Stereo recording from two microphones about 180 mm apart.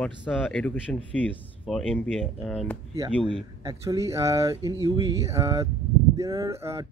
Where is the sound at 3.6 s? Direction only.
20° right (ahead or behind).